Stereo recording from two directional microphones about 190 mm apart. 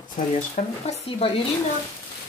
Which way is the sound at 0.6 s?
45° left (ahead or behind).